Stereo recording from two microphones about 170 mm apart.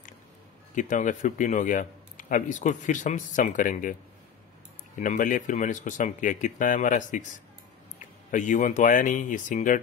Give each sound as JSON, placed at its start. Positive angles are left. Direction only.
{"t": 0.7, "sound": "a man's voice", "side_deg": 50}
{"t": 4.9, "sound": "a man's voice", "side_deg": 50}
{"t": 8.3, "sound": "a man's voice", "side_deg": 50}